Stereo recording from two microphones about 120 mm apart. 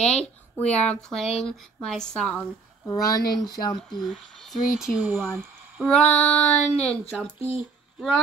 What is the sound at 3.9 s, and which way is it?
Child singing, centre (ahead or behind).